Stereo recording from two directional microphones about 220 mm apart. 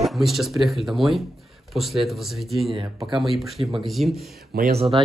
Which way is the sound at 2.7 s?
20° right (ahead or behind).